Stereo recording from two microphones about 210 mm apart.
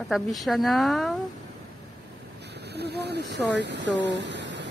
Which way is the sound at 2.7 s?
50° right (ahead or behind).